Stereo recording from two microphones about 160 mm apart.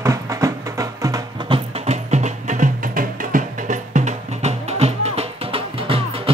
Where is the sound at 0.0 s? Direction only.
20° right (ahead or behind).